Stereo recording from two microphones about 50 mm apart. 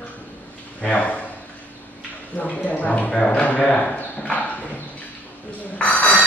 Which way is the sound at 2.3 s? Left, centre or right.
Left.